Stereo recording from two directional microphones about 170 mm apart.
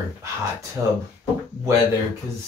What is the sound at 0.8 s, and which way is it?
Speech, 15° right (ahead or behind).